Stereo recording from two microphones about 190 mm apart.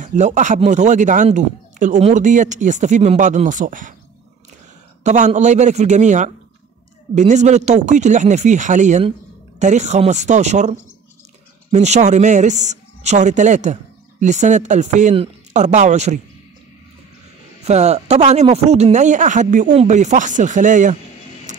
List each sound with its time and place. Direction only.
0.0 s speech: 40° right (ahead or behind)
5.0 s speech: 40° right (ahead or behind)
17.6 s speech: 35° right (ahead or behind)
21.5 s printer: 40° right (ahead or behind)